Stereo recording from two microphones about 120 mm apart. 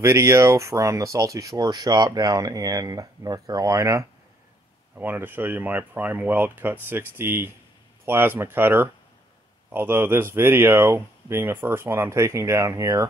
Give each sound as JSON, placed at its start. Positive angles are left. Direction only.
{"t": 0.0, "sound": "speech", "side_deg": -20}